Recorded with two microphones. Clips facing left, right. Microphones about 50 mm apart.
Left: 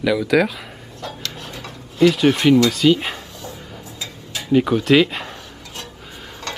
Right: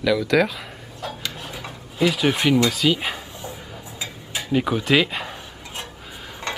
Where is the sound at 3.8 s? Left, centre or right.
Centre.